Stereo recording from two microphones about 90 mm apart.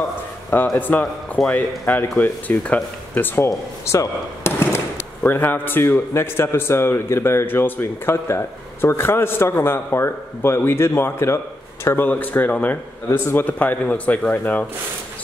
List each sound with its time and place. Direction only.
0.7 s speech: 20° left (ahead or behind)
3.4 s speech: 35° left (ahead or behind); by 14.7 s 20° left (ahead or behind)